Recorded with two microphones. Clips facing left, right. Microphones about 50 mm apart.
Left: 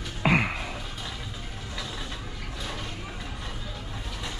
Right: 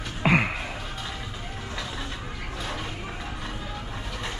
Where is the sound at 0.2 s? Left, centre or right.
Centre.